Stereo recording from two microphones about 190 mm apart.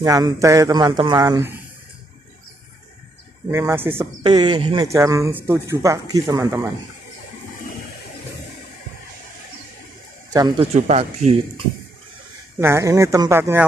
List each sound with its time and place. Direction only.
0.0 s speech: 20° right (ahead or behind)
3.5 s speech: 10° right (ahead or behind)
4.2 s speech: 25° right (ahead or behind)
10.3 s speech: 20° right (ahead or behind)
10.7 s speech: 35° right (ahead or behind)
12.5 s speech: 15° right (ahead or behind)